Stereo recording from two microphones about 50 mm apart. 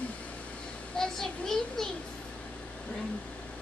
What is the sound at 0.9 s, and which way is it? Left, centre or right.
Speech, centre.